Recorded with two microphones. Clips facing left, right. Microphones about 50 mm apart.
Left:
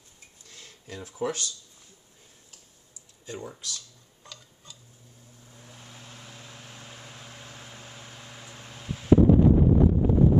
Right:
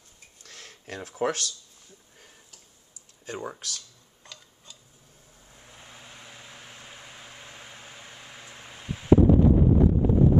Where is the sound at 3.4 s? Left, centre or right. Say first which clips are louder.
Right 3 dB; right.